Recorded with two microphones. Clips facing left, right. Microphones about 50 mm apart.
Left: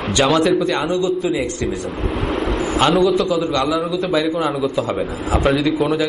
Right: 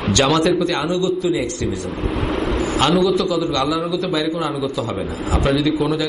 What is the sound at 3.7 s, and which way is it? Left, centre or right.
Speech, centre.